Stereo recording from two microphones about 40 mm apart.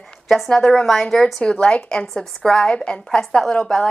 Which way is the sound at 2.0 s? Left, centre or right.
Centre.